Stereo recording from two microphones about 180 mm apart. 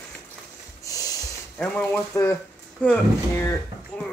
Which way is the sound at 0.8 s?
20° left (ahead or behind).